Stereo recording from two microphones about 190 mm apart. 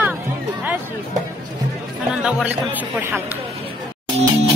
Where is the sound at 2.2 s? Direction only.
5° right (ahead or behind).